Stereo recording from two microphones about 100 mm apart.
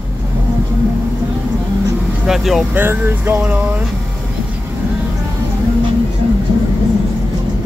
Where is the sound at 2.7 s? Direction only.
20° right (ahead or behind).